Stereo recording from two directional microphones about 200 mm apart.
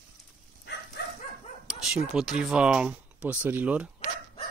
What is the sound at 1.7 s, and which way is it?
Speech, 5° right (ahead or behind).